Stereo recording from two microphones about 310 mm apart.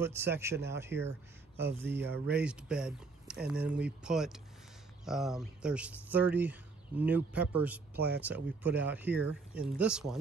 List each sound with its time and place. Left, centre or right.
0.0 s a man's voice: centre
7.9 s speech: right
8.3 s speech: centre